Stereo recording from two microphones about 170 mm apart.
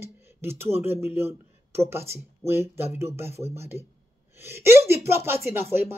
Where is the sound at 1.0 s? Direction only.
15° right (ahead or behind).